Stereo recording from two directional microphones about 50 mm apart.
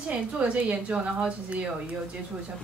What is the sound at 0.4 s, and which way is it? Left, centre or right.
A woman's voice, right.